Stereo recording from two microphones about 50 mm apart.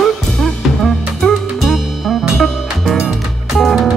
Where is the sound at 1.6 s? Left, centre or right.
Centre.